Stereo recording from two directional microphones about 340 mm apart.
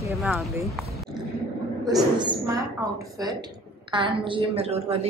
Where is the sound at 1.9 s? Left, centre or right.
Centre.